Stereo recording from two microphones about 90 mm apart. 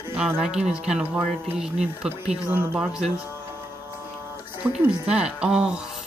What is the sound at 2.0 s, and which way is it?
Speech, 20° right (ahead or behind).